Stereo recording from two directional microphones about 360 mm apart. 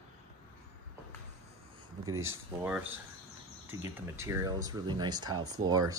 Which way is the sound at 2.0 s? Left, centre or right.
Right.